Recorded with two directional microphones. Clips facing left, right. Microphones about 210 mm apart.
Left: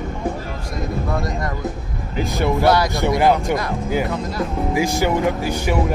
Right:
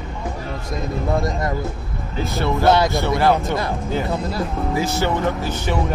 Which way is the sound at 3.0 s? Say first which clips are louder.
Left 1 dB; 15° left (ahead or behind).